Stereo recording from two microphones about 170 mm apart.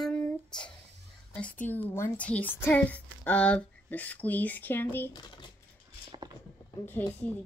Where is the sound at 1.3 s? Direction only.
10° left (ahead or behind).